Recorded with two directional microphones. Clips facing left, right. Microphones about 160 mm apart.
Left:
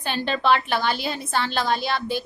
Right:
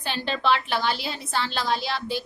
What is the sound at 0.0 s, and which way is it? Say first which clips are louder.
A woman's voice: left 3 dB; 50° left (ahead or behind).